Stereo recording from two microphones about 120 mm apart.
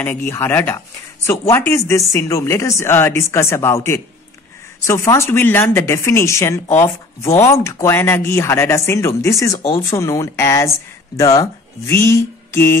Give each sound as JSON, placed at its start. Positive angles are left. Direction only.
{"t": 0.0, "sound": "speech", "side_deg": 15}